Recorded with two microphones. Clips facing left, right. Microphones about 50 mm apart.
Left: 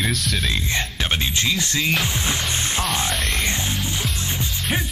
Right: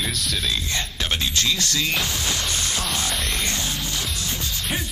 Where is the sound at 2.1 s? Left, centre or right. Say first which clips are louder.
Left 2 dB; left.